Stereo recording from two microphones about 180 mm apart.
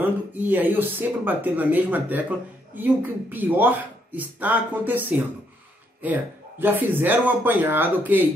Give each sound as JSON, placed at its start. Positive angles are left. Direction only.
{"t": 0.0, "sound": "speech", "side_deg": -10}